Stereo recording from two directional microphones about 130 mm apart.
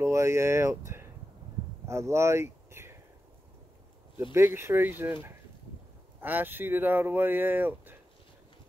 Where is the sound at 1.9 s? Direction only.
20° right (ahead or behind).